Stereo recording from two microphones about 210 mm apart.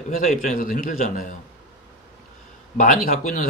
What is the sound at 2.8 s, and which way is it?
Speech, 40° left (ahead or behind).